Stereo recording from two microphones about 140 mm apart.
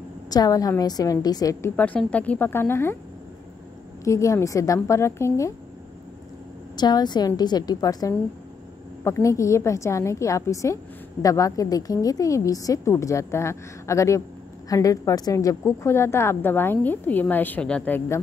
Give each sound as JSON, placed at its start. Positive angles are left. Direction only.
{"t": 0.3, "sound": "a woman's voice", "side_deg": 25}
{"t": 1.8, "sound": "a woman's voice", "side_deg": 10}
{"t": 4.0, "sound": "a woman's voice", "side_deg": 20}
{"t": 6.8, "sound": "a woman's voice", "side_deg": 30}